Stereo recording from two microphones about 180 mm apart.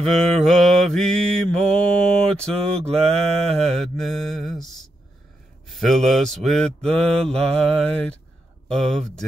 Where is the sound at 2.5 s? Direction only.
35° right (ahead or behind).